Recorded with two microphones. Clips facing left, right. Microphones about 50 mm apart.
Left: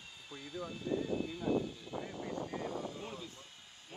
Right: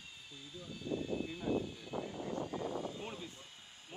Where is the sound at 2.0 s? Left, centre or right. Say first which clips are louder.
Left 1 dB; left.